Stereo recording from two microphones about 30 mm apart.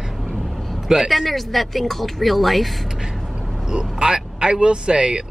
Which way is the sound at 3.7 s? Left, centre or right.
Right.